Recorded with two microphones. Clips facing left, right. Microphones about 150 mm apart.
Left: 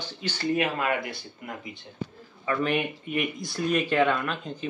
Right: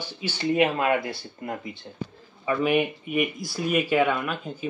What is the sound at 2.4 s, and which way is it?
Speech, 10° right (ahead or behind).